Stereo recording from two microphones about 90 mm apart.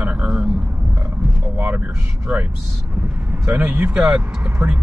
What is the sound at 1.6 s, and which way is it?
Speech, 20° right (ahead or behind).